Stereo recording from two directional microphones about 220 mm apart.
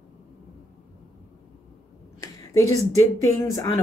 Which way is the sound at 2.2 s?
15° left (ahead or behind).